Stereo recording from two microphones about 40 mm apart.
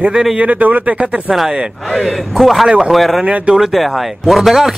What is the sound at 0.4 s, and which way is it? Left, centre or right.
Speech, right.